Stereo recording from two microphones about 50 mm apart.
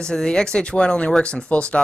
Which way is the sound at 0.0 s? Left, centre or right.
Centre.